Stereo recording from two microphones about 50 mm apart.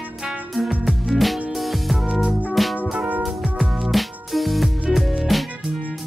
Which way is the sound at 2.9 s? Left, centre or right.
Right.